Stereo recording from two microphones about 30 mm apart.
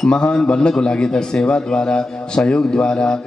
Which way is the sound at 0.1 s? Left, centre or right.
Left.